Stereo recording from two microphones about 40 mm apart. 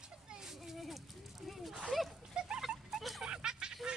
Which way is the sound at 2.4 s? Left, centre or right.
Centre.